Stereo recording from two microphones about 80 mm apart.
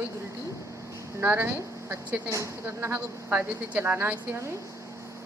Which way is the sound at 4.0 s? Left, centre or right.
Right.